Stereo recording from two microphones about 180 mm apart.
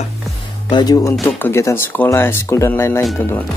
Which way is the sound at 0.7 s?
25° left (ahead or behind).